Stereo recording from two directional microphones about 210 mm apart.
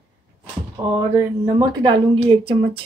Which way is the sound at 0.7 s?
20° right (ahead or behind).